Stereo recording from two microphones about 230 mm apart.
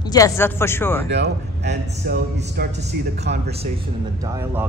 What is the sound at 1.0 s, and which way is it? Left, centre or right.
A man's voice, right.